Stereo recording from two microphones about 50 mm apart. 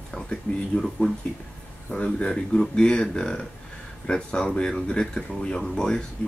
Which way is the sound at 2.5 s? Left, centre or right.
Centre.